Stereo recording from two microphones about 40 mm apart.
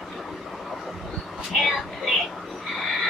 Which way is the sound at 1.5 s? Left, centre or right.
Centre.